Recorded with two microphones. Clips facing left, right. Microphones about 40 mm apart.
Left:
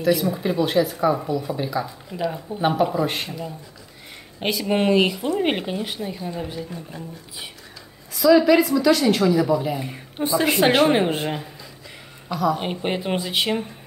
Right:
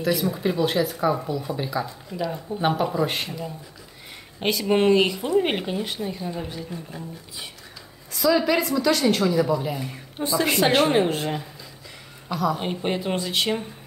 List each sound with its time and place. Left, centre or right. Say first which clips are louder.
0.0 s a woman's voice: left 3 dB; centre
2.6 s speech: left 2 dB; centre
9.8 s a woman's voice: left 2 dB; centre
12.3 s a woman's voice: left 2 dB; centre
12.5 s a woman's voice: left 1 dB; centre